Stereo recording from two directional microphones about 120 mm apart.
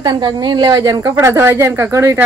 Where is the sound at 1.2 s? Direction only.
20° right (ahead or behind).